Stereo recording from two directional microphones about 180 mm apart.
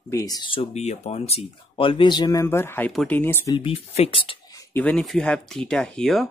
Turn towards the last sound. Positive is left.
turn(degrees=5)  # may be behind; listen again after turning